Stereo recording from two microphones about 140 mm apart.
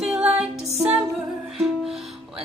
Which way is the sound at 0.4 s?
50° right (ahead or behind).